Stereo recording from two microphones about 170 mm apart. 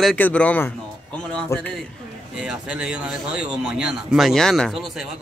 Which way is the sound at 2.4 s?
5° right (ahead or behind).